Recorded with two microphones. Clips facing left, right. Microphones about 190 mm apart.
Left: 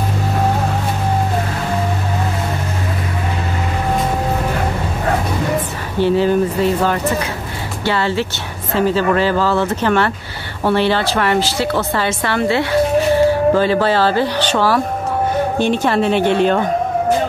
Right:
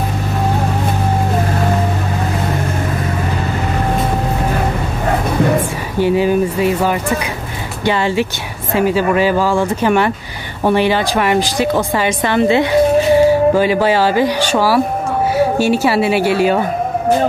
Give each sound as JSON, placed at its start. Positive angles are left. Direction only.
{"t": 5.9, "sound": "speech", "side_deg": -10}